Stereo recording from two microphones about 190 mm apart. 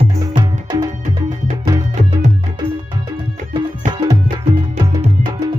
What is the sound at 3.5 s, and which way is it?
Music, 20° right (ahead or behind).